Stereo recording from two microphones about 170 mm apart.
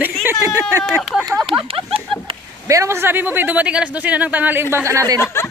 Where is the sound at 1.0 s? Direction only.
Centre (ahead or behind).